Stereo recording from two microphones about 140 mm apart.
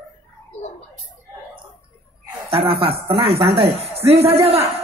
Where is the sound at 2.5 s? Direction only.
40° right (ahead or behind).